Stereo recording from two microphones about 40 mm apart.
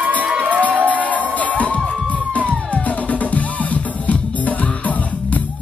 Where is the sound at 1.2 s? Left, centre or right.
Left.